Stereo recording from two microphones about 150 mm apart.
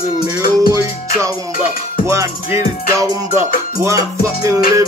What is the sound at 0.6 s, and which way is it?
Music, 20° right (ahead or behind).